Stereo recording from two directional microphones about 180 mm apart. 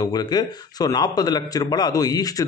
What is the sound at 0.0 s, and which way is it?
A man's voice, 25° left (ahead or behind).